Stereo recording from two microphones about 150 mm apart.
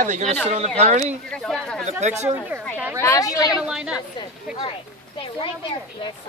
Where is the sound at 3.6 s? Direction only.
5° right (ahead or behind).